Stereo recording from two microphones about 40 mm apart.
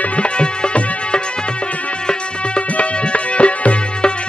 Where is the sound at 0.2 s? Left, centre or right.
Left.